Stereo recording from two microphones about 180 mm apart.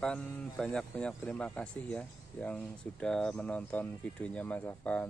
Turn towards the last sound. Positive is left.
turn(degrees=10)  # may be behind; listen again after turning